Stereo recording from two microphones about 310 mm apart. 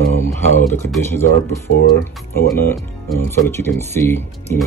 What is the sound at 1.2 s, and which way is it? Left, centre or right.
Speech, left.